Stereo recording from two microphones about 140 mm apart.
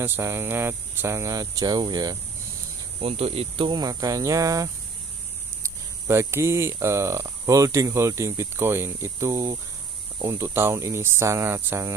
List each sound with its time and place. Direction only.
0.0 s speech: 15° right (ahead or behind)
3.0 s speech: 45° right (ahead or behind); by 11.9 s 15° right (ahead or behind)